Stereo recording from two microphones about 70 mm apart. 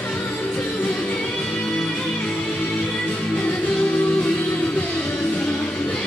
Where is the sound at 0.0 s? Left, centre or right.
Centre.